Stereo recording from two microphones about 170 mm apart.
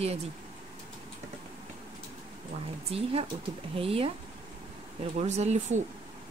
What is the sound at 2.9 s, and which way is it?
A woman's voice, 35° right (ahead or behind).